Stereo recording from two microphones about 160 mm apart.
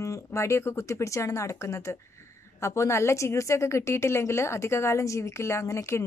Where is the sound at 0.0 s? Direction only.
20° left (ahead or behind).